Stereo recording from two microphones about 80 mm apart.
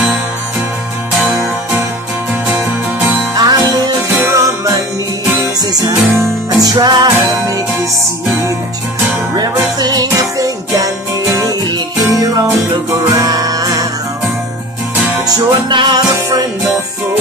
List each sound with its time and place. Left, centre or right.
3.3 s music: right
4.2 s music: right
5.6 s music: right
9.3 s music: right
15.2 s music: right